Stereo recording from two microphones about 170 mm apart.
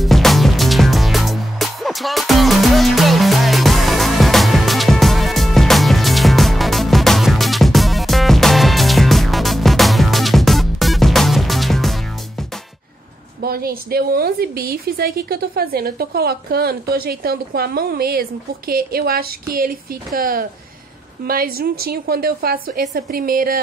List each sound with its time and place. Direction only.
0.0 s music: centre (ahead or behind)
13.4 s a woman's voice: 60° right (ahead or behind)